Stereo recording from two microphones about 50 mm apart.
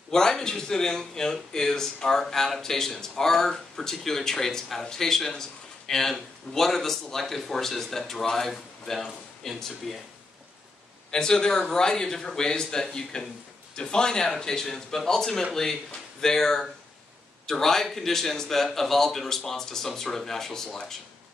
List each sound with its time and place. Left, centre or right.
0.1 s a man's voice: centre
11.1 s a man's voice: centre